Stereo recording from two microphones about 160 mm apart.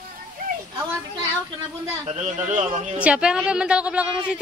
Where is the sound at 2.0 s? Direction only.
45° right (ahead or behind).